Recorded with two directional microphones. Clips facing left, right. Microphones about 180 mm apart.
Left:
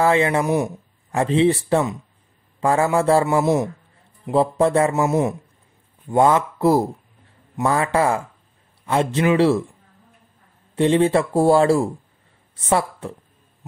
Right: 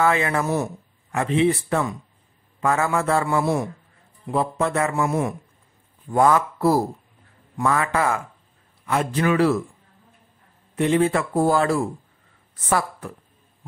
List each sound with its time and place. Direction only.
0.0 s a man's voice: 25° left (ahead or behind)
1.1 s a man's voice: 30° left (ahead or behind)
7.5 s a man's voice: 30° left (ahead or behind)
10.8 s a man's voice: 30° left (ahead or behind)